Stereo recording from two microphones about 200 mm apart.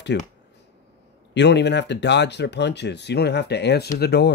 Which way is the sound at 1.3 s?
60° left (ahead or behind).